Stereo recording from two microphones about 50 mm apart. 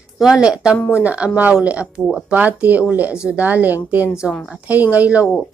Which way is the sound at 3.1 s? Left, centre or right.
Centre.